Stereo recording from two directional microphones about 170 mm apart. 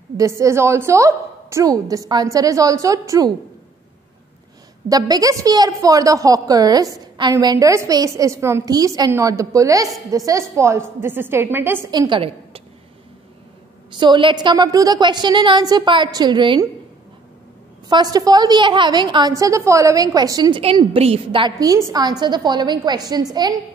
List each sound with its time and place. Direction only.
0.2 s a woman's voice: 15° right (ahead or behind)
4.8 s a woman's voice: 20° right (ahead or behind)
11.9 s a woman's voice: 25° right (ahead or behind)
13.9 s a woman's voice: 25° right (ahead or behind)
17.8 s a woman's voice: 25° right (ahead or behind)
20.6 s a woman's voice: 35° right (ahead or behind)